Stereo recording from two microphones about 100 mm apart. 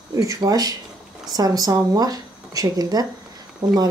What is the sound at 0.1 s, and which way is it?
Speech, 35° right (ahead or behind).